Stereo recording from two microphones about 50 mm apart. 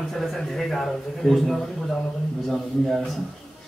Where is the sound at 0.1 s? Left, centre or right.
Centre.